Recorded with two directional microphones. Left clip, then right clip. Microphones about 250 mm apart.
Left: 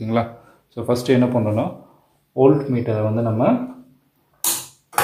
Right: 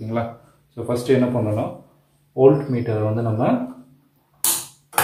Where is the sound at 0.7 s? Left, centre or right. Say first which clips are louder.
Left 1 dB; left.